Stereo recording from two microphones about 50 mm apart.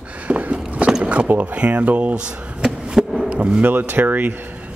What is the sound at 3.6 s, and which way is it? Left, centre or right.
Speech, right.